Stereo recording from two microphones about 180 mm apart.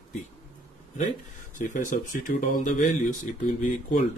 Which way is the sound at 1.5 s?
45° left (ahead or behind).